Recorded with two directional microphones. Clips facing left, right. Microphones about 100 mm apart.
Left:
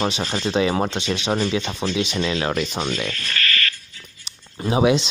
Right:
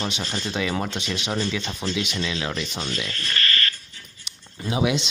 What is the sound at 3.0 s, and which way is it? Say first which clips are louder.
Speech: left 2 dB; 30° right (ahead or behind).